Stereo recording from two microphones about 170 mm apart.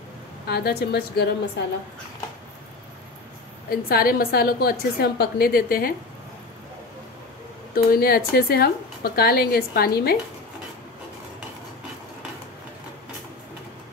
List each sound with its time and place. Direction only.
0.5 s a woman's voice: 70° left (ahead or behind)
3.7 s a woman's voice: 60° left (ahead or behind)
7.7 s a woman's voice: 60° left (ahead or behind)